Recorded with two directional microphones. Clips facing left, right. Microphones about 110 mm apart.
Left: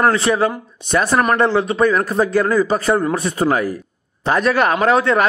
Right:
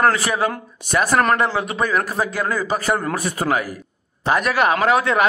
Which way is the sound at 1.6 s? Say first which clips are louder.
Left 5 dB; 30° left (ahead or behind).